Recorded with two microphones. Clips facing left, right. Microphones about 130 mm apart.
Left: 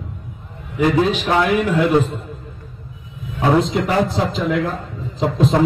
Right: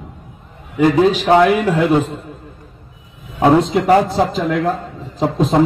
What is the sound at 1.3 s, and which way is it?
Speech, 35° right (ahead or behind).